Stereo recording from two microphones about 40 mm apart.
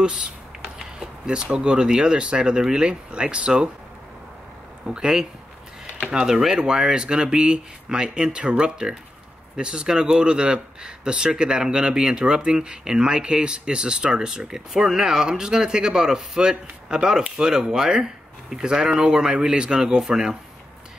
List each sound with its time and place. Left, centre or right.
0.0 s speech: right
4.8 s a man's voice: centre